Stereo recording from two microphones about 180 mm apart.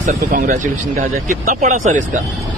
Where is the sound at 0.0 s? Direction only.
45° right (ahead or behind).